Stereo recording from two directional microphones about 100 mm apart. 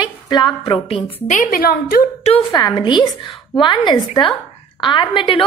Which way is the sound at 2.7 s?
50° left (ahead or behind).